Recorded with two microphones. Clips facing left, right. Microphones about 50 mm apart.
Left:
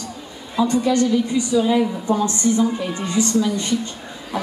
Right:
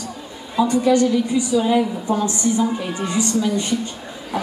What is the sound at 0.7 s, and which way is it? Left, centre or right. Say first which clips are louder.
A woman's voice: right 2 dB; centre.